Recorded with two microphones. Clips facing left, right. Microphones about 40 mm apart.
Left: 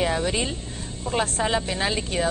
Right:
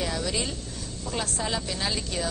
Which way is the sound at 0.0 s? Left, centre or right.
Left.